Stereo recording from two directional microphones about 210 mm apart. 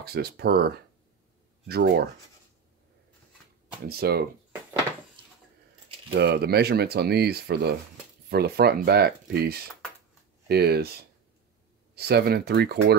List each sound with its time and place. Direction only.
0.0 s speech: 50° right (ahead or behind)
3.8 s speech: 45° right (ahead or behind)
6.0 s speech: 55° right (ahead or behind)
11.9 s speech: 50° right (ahead or behind)